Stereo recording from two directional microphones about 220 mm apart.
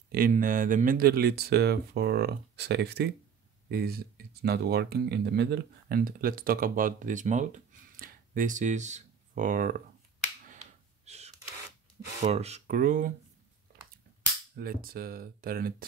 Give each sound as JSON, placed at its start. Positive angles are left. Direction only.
{"t": 0.1, "sound": "speech", "side_deg": -40}
{"t": 11.1, "sound": "a sound", "side_deg": -30}
{"t": 12.2, "sound": "speech", "side_deg": -30}
{"t": 14.6, "sound": "speech", "side_deg": -45}